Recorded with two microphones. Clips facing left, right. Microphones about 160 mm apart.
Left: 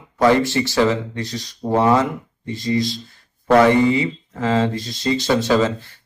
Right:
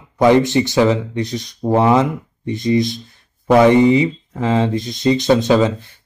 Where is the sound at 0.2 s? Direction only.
20° right (ahead or behind).